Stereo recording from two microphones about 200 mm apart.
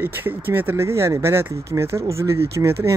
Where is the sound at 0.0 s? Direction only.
10° right (ahead or behind).